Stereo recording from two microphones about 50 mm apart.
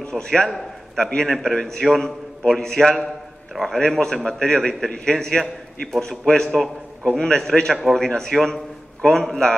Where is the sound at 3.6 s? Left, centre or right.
Centre.